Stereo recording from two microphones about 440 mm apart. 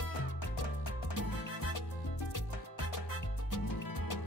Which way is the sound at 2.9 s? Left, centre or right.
Left.